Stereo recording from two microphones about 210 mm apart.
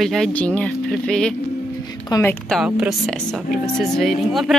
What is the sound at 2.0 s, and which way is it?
Speech, 15° left (ahead or behind).